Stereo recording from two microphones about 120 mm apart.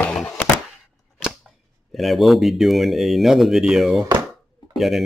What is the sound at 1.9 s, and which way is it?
Speech, centre (ahead or behind).